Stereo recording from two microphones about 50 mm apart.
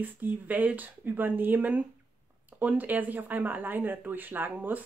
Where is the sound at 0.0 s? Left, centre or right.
Right.